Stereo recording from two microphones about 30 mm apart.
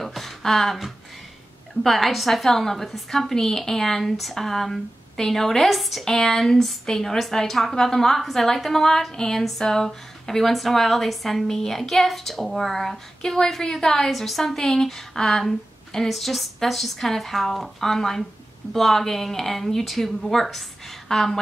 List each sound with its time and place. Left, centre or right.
0.1 s a sound: centre
1.8 s a woman's voice: centre
6.0 s a woman's voice: centre
14.1 s a woman's voice: centre